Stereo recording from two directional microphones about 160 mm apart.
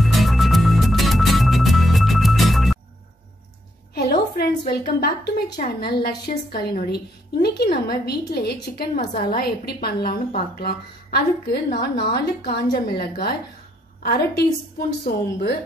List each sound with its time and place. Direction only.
0.0 s music: centre (ahead or behind)
3.9 s a woman's voice: 85° left
6.3 s a woman's voice: 50° left (ahead or behind)
6.6 s a woman's voice: 85° left
8.9 s a woman's voice: 60° left (ahead or behind); by 12.2 s 90° left
12.4 s a woman's voice: 75° left (ahead or behind)
14.0 s a woman's voice: 90° left
15.0 s a woman's voice: 75° left (ahead or behind)